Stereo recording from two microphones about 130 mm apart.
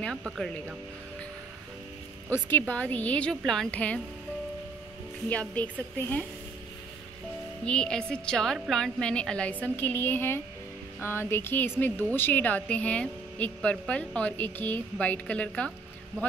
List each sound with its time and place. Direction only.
0.1 s a woman's voice: 5° right (ahead or behind)
2.2 s a woman's voice: 15° left (ahead or behind)
5.3 s a woman's voice: 10° left (ahead or behind)
7.6 s a woman's voice: 5° left (ahead or behind)